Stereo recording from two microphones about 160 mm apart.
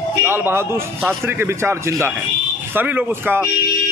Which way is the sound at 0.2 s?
15° right (ahead or behind).